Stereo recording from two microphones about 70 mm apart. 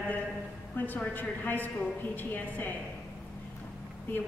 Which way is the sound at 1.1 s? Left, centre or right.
Left.